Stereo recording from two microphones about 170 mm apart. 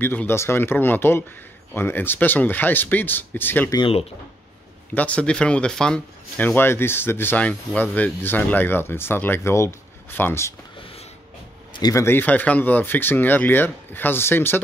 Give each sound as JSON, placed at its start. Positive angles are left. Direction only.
{"t": 0.0, "sound": "speech", "side_deg": 10}
{"t": 3.7, "sound": "speech", "side_deg": 30}
{"t": 4.9, "sound": "speech", "side_deg": 10}
{"t": 11.7, "sound": "speech", "side_deg": 20}